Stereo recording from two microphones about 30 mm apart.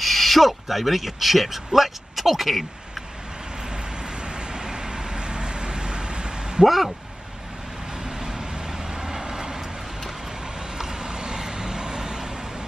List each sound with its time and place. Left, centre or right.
0.0 s speech: centre
3.6 s vehicle: right
6.6 s speech: centre
7.9 s vehicle: right